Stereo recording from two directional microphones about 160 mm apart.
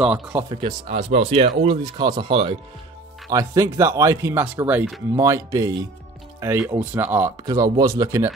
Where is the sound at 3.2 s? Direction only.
20° right (ahead or behind).